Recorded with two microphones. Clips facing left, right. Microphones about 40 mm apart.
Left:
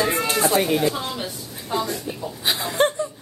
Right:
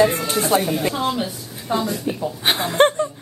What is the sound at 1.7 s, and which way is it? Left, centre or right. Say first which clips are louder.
Speech: right 3 dB; centre.